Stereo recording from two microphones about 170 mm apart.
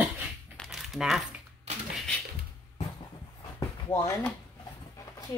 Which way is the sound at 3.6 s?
15° left (ahead or behind).